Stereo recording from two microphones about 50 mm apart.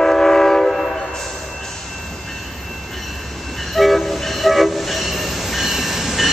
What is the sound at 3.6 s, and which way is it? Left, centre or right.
Train, centre.